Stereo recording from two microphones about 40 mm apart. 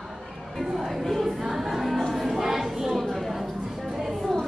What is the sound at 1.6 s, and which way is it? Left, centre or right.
Music, centre.